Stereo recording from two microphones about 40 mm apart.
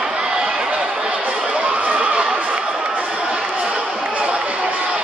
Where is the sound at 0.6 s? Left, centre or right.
Right.